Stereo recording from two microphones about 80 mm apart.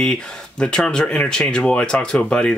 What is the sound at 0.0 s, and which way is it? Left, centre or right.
Speech, centre.